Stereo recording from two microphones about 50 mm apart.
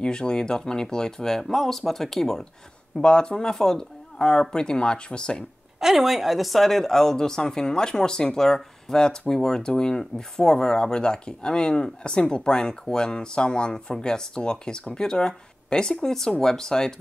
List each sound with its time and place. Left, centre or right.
0.0 s speech: centre
5.8 s speech: centre